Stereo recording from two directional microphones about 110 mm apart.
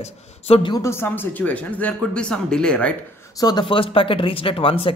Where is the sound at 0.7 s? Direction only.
25° left (ahead or behind); by 2.9 s 10° left (ahead or behind).